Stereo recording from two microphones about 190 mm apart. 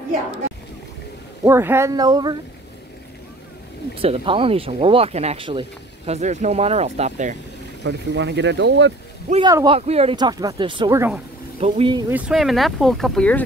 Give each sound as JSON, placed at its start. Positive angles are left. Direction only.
{"t": 1.4, "sound": "speech", "side_deg": -15}
{"t": 3.9, "sound": "speech", "side_deg": -30}
{"t": 7.8, "sound": "speech", "side_deg": -65}
{"t": 9.5, "sound": "speech", "side_deg": -20}
{"t": 9.8, "sound": "speech", "side_deg": -35}
{"t": 12.1, "sound": "speech", "side_deg": -5}